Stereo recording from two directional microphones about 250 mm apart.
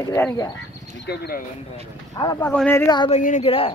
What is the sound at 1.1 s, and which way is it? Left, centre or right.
Speech, left.